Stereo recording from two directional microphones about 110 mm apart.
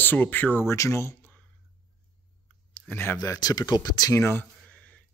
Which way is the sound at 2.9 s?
20° left (ahead or behind).